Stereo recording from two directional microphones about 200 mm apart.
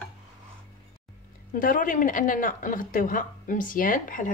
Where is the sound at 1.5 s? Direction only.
45° left (ahead or behind).